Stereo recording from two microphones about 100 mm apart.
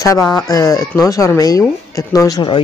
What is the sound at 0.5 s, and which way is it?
Speech, 35° left (ahead or behind).